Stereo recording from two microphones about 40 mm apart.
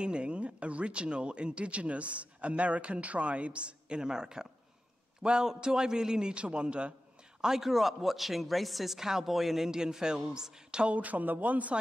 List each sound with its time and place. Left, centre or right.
0.0 s a man's voice: right
7.4 s speech: centre
9.7 s a man's voice: centre
10.9 s speech: right